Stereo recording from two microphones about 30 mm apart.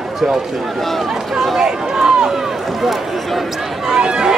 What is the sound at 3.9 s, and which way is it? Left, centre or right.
Speech, right.